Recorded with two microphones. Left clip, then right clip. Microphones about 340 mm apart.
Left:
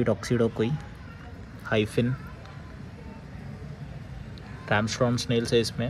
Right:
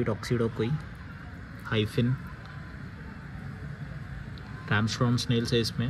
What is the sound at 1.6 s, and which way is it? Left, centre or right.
Speech, centre.